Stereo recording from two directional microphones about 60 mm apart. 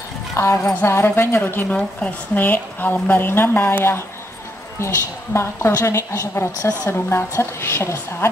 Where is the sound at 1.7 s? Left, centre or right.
Left.